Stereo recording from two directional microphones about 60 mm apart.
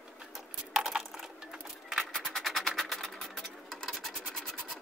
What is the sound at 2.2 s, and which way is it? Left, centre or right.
Music, centre.